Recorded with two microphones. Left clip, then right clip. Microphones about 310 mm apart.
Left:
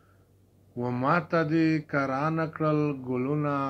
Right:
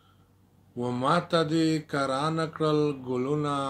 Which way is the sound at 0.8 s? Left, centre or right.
Centre.